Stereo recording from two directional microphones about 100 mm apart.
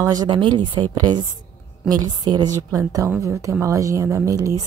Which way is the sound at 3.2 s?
30° right (ahead or behind).